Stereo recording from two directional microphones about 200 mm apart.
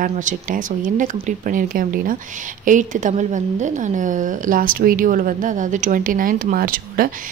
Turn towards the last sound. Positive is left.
turn(degrees=-45)  # may be behind; listen again after turning